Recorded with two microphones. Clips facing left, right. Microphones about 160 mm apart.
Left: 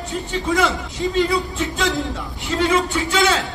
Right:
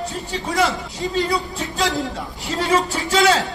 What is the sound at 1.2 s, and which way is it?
A man's voice, 35° right (ahead or behind).